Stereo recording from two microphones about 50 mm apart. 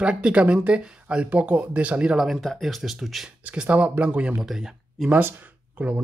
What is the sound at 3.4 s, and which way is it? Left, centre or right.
Speech, right.